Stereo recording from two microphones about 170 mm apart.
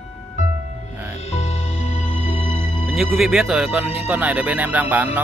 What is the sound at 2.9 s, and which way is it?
Speech, centre (ahead or behind).